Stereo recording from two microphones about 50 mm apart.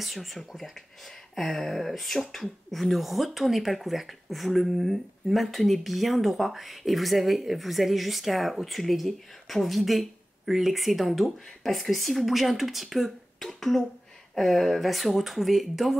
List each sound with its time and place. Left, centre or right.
0.0 s speech: centre